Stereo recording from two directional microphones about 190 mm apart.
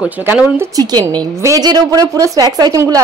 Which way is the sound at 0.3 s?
10° right (ahead or behind).